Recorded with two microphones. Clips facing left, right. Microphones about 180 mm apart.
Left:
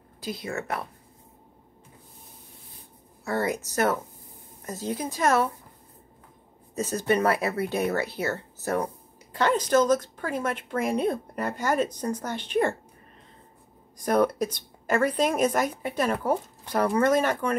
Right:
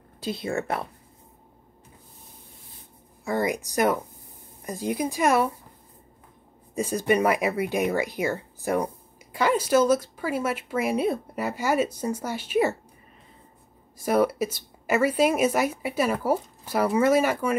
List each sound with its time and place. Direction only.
0.2 s speech: 25° right (ahead or behind)
3.3 s speech: 15° right (ahead or behind)
6.7 s speech: 10° right (ahead or behind)
13.9 s speech: 5° right (ahead or behind)